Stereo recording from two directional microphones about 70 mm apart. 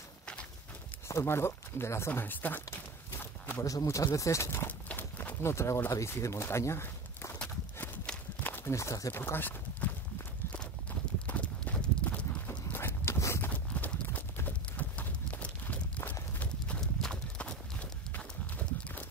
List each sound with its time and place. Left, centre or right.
1.0 s speech: left
3.6 s speech: left
4.6 s horse: left
5.4 s speech: left
7.3 s horse: centre
8.7 s speech: left
9.1 s speech: left
10.5 s clip-clop: centre
12.4 s a sound: left
13.5 s clip-clop: left
16.3 s horse: centre
16.8 s horse: centre
17.4 s horse: centre